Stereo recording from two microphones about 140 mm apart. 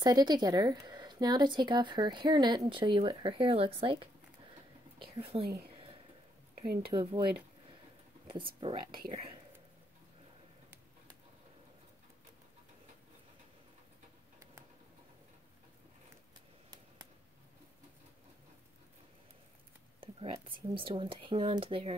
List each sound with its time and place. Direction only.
0.0 s speech: 30° right (ahead or behind)
5.1 s speech: 40° right (ahead or behind)
6.8 s speech: 35° right (ahead or behind)
8.5 s speech: 35° right (ahead or behind)
20.0 s whispering: 40° right (ahead or behind)
20.4 s speech: 40° right (ahead or behind)